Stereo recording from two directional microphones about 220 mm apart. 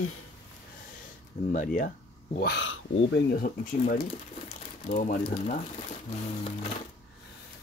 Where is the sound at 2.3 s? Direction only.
50° left (ahead or behind); by 5.6 s 35° left (ahead or behind).